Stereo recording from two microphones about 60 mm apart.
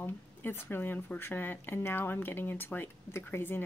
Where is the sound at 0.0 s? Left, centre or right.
Left.